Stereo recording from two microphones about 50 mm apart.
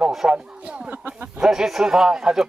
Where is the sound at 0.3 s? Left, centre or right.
Centre.